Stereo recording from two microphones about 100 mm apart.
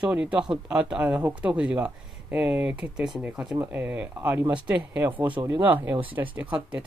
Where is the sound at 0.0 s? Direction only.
10° right (ahead or behind).